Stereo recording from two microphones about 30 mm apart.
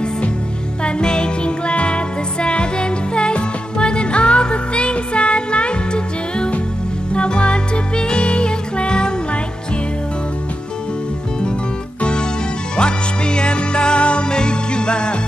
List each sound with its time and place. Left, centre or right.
0.8 s music: left
12.0 s music: left